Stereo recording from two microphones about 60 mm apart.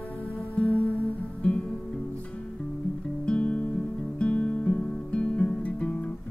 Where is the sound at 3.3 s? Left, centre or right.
Left.